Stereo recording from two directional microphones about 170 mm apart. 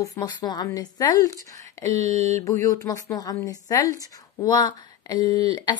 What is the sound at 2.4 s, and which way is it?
Speech, 20° left (ahead or behind).